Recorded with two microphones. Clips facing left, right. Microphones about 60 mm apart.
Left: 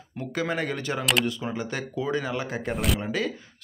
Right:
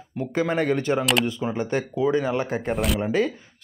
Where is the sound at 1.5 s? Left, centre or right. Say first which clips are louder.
Right 6 dB; right.